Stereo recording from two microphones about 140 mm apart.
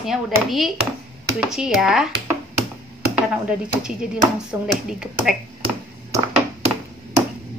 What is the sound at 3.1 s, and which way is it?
Speech, 10° right (ahead or behind).